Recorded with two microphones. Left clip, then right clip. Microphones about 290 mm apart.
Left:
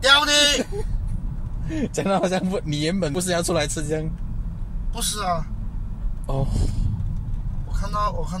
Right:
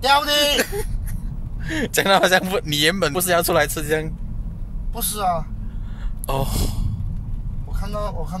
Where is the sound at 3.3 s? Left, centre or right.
Right.